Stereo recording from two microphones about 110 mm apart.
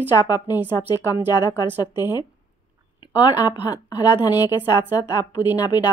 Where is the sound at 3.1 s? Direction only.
40° left (ahead or behind).